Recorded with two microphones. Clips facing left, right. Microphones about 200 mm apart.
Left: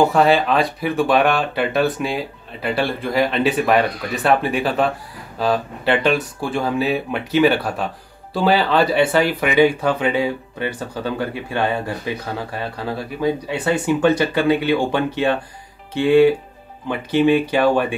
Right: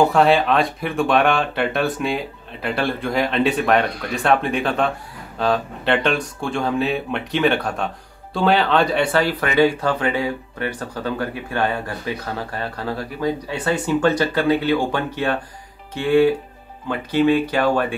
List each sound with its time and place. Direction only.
0.1 s speech: centre (ahead or behind); by 17.8 s 15° left (ahead or behind)